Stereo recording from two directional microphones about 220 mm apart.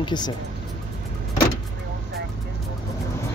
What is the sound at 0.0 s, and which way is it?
Speech, 20° left (ahead or behind).